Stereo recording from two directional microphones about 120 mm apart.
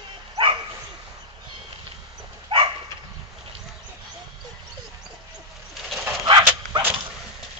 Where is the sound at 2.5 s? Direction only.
45° right (ahead or behind).